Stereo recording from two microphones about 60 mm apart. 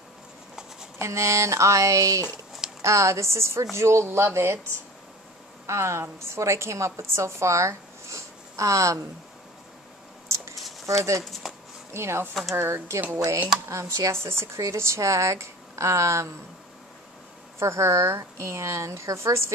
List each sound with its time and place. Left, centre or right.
0.9 s a woman's voice: right
5.7 s a woman's voice: right
10.9 s a woman's voice: right
11.4 s a sound: centre
11.9 s a woman's voice: right
17.6 s a woman's voice: right